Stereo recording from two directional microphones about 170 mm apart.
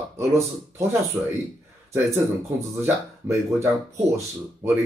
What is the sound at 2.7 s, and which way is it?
A man's voice, 15° right (ahead or behind).